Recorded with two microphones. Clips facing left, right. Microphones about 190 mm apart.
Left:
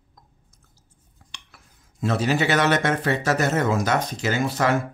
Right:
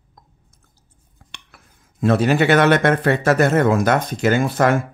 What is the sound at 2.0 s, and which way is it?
Speech, 55° right (ahead or behind).